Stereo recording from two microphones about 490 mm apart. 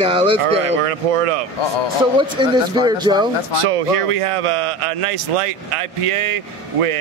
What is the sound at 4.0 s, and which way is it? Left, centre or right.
A man's voice, right.